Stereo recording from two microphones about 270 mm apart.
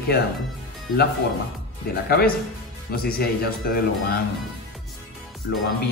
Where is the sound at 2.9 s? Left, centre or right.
Left.